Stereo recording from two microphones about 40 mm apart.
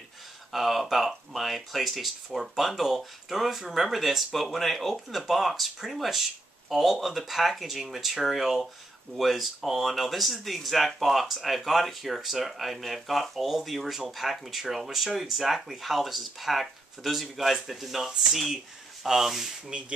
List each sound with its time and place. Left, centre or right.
0.5 s speech: centre
19.7 s speech: right